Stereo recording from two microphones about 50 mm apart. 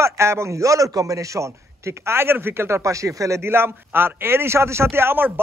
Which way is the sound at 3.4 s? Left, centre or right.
Right.